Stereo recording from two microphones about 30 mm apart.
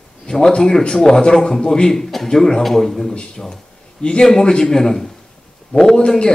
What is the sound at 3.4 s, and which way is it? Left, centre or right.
A man's voice, centre.